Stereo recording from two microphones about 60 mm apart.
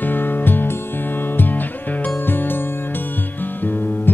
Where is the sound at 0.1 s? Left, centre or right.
Left.